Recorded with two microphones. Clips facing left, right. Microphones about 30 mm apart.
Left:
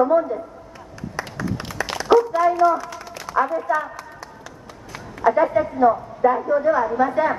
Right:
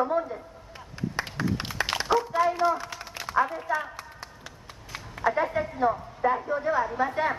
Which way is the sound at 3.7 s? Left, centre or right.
Centre.